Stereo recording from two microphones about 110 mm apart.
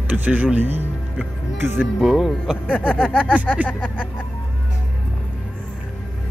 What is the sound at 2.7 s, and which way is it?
Speech, 10° left (ahead or behind).